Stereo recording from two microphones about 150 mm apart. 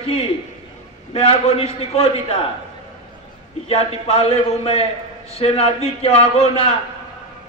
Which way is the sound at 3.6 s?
40° left (ahead or behind).